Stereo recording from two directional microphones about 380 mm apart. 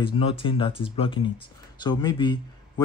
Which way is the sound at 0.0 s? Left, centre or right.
Centre.